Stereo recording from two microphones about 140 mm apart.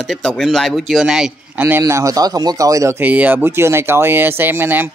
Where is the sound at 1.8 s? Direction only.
25° right (ahead or behind).